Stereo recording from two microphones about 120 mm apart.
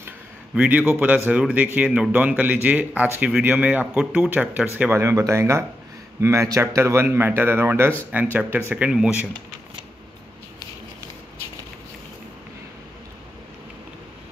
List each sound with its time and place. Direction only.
0.6 s speech: 10° right (ahead or behind)